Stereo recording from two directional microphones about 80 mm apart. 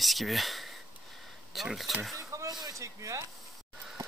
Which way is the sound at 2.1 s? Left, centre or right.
Right.